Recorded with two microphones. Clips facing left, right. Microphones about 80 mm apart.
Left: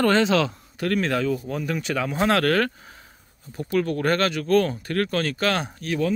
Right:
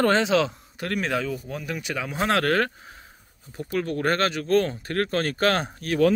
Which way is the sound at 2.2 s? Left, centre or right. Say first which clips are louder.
Left 1 dB; right.